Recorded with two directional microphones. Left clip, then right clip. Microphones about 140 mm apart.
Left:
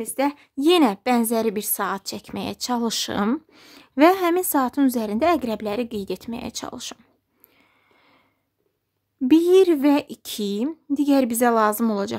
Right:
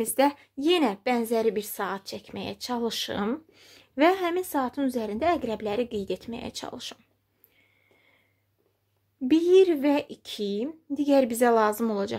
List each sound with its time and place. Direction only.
0.0 s a woman's voice: centre (ahead or behind)
0.6 s a woman's voice: 30° left (ahead or behind)
7.5 s a sound: 30° left (ahead or behind)
9.3 s speech: 30° left (ahead or behind)